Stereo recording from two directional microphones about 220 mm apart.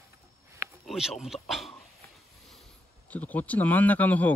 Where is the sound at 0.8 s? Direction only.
Centre (ahead or behind).